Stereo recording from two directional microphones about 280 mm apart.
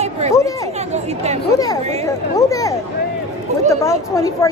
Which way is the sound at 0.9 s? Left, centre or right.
Right.